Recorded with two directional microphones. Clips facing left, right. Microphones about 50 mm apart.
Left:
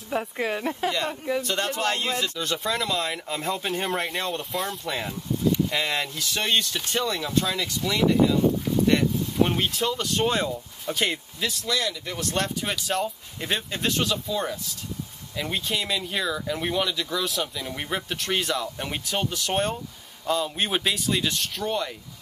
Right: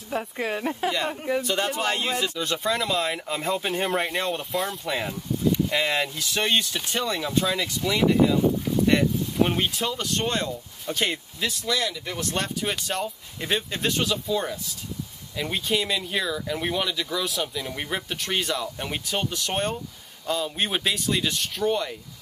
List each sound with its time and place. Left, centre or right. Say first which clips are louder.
0.1 s a woman's voice: left 1 dB; centre